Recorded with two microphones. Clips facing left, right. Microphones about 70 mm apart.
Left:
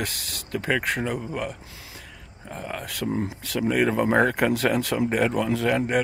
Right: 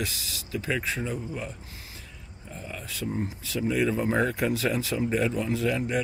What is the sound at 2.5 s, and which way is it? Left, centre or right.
Speech, left.